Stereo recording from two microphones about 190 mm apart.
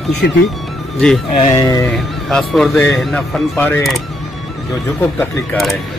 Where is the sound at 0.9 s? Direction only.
Centre (ahead or behind).